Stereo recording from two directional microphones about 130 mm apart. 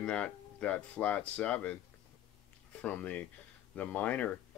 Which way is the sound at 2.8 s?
10° left (ahead or behind).